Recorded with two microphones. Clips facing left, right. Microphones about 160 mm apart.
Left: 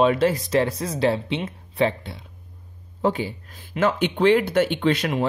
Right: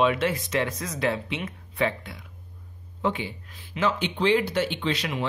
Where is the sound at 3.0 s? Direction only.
40° left (ahead or behind).